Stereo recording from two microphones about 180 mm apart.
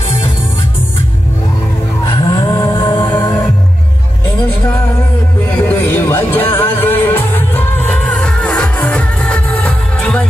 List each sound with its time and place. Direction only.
2.2 s music: 25° left (ahead or behind)
5.4 s music: 10° left (ahead or behind)